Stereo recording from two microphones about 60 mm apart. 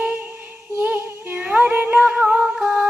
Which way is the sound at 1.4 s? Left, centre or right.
Right.